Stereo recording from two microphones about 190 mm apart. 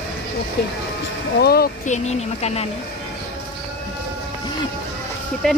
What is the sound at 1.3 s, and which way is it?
Speech, 55° left (ahead or behind).